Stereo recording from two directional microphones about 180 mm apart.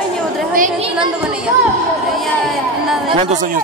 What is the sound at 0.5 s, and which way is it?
Speech, 40° right (ahead or behind).